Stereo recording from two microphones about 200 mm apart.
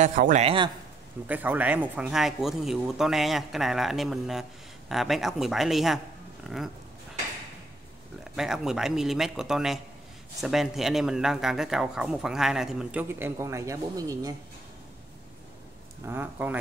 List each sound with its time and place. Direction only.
0.0 s speech: 40° right (ahead or behind)
1.2 s speech: 10° right (ahead or behind)
8.2 s speech: centre (ahead or behind)
16.1 s speech: 10° right (ahead or behind)